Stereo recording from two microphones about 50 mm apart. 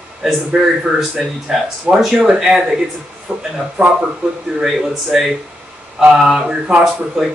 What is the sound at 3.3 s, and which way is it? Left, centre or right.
Speech, right.